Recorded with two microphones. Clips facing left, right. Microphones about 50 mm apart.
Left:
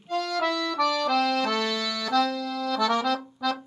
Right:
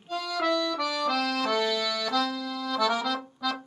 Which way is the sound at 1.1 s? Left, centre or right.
Centre.